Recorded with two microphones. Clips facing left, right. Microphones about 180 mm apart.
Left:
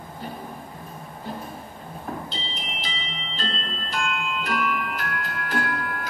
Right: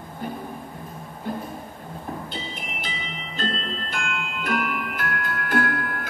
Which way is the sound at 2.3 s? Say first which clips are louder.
Right 2 dB; 50° right (ahead or behind).